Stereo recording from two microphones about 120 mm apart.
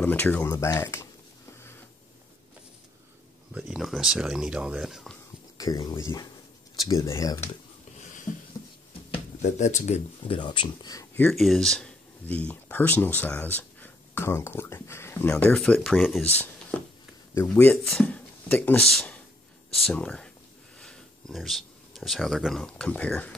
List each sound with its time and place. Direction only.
0.0 s speech: 15° left (ahead or behind)
3.5 s speech: 5° right (ahead or behind)
6.8 s speech: 25° left (ahead or behind)
9.4 s speech: 80° left
10.2 s speech: 45° left (ahead or behind)
11.1 s speech: 5° left (ahead or behind); by 15.2 s 20° left (ahead or behind)
15.4 s speech: 10° left (ahead or behind)
16.3 s speech: 15° left (ahead or behind)